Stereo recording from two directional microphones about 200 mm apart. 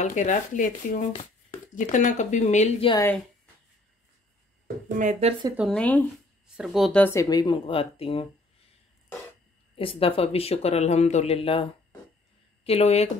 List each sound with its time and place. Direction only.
0.0 s speech: 35° left (ahead or behind)
4.9 s speech: 40° right (ahead or behind)
5.6 s speech: 5° left (ahead or behind); by 8.3 s 30° left (ahead or behind)
9.8 s speech: 30° left (ahead or behind)